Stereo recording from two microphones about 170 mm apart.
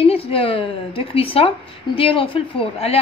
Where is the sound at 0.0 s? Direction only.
35° left (ahead or behind).